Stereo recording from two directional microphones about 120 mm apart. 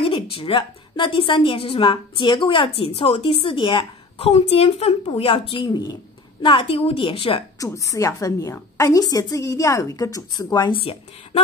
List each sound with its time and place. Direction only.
0.0 s a woman's voice: 50° left (ahead or behind); by 5.9 s 35° left (ahead or behind)
6.4 s a woman's voice: 45° left (ahead or behind)
7.5 s a woman's voice: 25° left (ahead or behind)
10.8 s a woman's voice: 55° left (ahead or behind)